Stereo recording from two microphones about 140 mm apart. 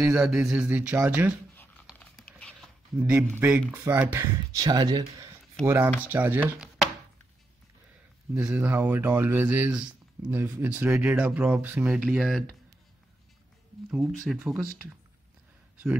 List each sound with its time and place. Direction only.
0.0 s speech: 5° right (ahead or behind)
2.0 s a sound: 10° left (ahead or behind)
3.0 s speech: 10° right (ahead or behind)
4.6 s speech: 30° right (ahead or behind)
5.7 s speech: 15° right (ahead or behind)
8.5 s speech: 10° right (ahead or behind)
13.9 s speech: centre (ahead or behind)